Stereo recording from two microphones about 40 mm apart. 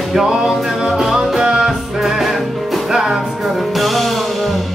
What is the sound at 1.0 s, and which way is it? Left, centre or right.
Music, centre.